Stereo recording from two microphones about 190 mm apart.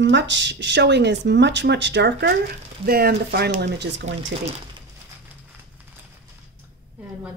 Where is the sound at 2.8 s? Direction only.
55° right (ahead or behind).